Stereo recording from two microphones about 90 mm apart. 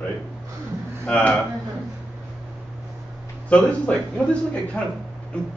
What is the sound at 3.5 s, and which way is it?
Speech, 15° left (ahead or behind).